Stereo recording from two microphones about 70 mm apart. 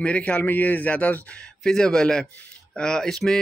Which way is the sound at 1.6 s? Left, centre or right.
Centre.